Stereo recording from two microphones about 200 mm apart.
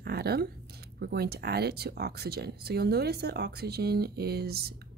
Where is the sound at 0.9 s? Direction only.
55° right (ahead or behind).